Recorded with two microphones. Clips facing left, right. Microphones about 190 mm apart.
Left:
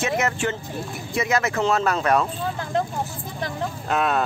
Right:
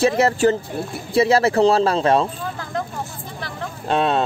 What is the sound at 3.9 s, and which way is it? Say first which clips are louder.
Speech: right 4 dB; 25° right (ahead or behind).